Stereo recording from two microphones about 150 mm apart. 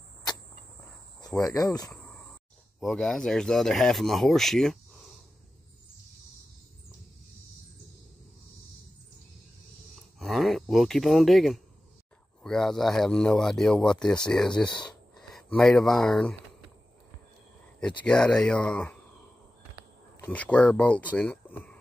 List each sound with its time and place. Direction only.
1.4 s speech: 25° left (ahead or behind)
2.8 s speech: centre (ahead or behind)
10.1 s a sound: centre (ahead or behind)
12.4 s speech: 5° left (ahead or behind)
17.7 s speech: 5° left (ahead or behind)
20.2 s speech: 10° left (ahead or behind)